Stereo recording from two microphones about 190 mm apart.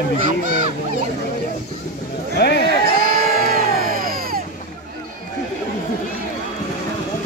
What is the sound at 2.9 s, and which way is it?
Crowd, 50° right (ahead or behind).